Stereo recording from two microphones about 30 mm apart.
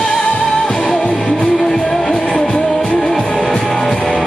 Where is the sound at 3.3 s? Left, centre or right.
Left.